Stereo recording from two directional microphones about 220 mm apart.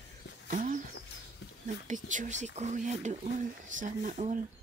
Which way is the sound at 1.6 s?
35° right (ahead or behind).